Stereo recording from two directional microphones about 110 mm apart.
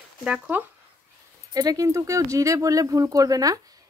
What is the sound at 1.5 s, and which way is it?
A woman's voice, 30° right (ahead or behind).